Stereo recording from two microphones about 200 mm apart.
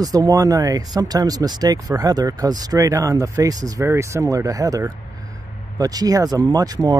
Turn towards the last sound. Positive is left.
turn(degrees=-20)  # may be behind; listen again after turning